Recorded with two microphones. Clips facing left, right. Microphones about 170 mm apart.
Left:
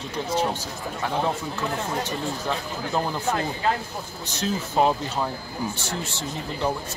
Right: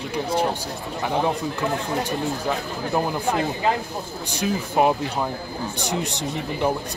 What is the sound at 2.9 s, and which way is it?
Speech, 15° right (ahead or behind).